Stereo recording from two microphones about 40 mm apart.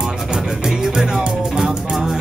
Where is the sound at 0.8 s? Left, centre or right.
Centre.